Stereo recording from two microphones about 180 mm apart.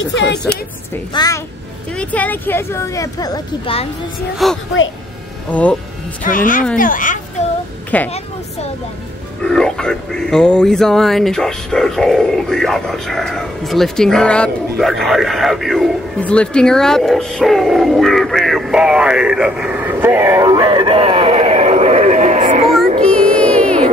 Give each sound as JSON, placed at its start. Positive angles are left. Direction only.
{"t": 1.1, "sound": "a child's voice", "side_deg": 20}
{"t": 2.0, "sound": "speech", "side_deg": 10}
{"t": 4.4, "sound": "speech", "side_deg": 0}
{"t": 6.2, "sound": "a woman's voice", "side_deg": 50}
{"t": 7.9, "sound": "speech", "side_deg": 10}
{"t": 9.4, "sound": "speech", "side_deg": 5}
{"t": 23.1, "sound": "music", "side_deg": 5}